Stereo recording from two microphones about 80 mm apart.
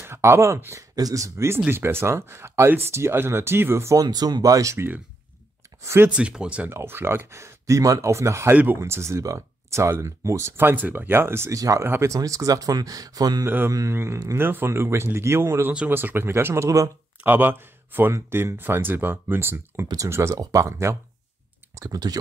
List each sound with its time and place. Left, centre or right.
0.0 s speech: right
0.9 s speech: right
4.0 s speech: right
4.7 s speech: right
6.0 s speech: centre
6.7 s speech: right
11.5 s speech: right
11.8 s speech: right
12.2 s speech: right
13.7 s speech: right
17.2 s speech: right
20.3 s speech: right
21.7 s speech: right